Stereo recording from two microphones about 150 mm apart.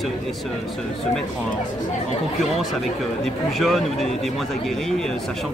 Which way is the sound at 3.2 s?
Centre (ahead or behind).